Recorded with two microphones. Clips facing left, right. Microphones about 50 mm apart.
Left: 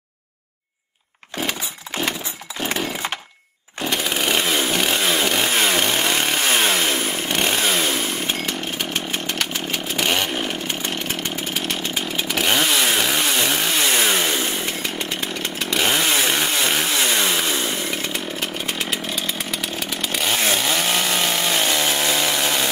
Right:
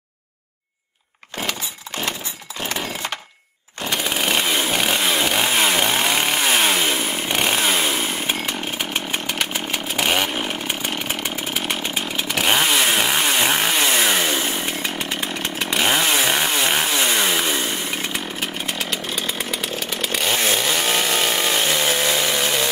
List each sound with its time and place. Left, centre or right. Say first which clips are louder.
3.8 s chainsaw: even; centre
13.2 s chainsaw: right 2 dB; centre
13.7 s chainsaw: right 1 dB; centre
15.8 s chainsaw: right 1 dB; centre